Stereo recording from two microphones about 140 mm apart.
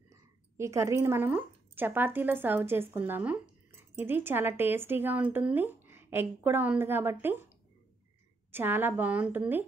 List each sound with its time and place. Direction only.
0.1 s speech: 20° right (ahead or behind)